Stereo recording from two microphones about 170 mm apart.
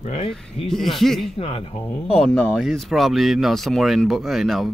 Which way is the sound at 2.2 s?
5° left (ahead or behind).